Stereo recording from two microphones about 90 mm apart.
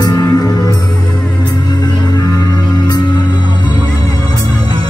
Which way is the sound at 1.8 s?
50° left (ahead or behind).